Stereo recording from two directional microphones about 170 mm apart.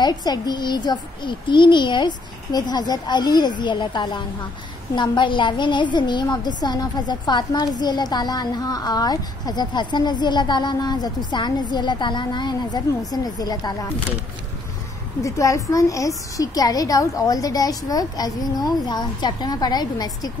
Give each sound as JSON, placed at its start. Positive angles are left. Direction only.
{"t": 0.0, "sound": "a woman's voice", "side_deg": 25}
{"t": 15.2, "sound": "a woman's voice", "side_deg": 20}